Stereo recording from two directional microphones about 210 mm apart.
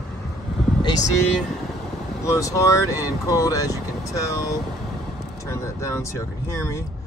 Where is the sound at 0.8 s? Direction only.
20° left (ahead or behind).